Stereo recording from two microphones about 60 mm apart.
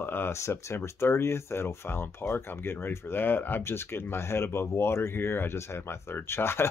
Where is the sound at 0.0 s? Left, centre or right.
Left.